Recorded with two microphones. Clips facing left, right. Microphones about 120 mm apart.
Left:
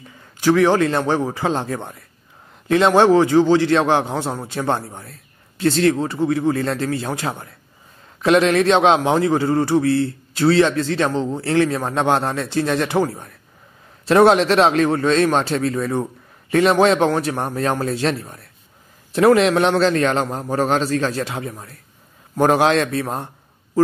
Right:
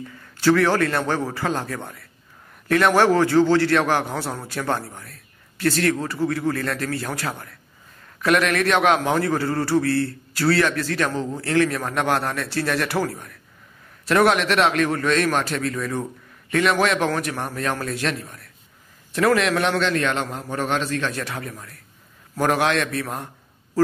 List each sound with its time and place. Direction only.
0.4 s a man's voice: 15° left (ahead or behind)